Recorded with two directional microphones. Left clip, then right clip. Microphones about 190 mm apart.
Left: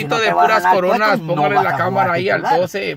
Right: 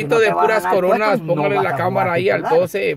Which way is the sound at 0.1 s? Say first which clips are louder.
Left 1 dB; 10° right (ahead or behind).